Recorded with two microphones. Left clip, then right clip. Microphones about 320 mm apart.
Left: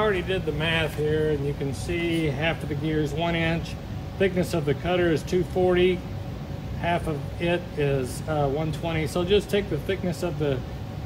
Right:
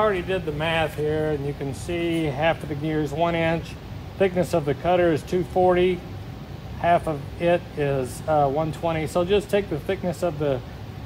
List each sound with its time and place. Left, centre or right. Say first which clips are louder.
0.0 s speech: right 2 dB; centre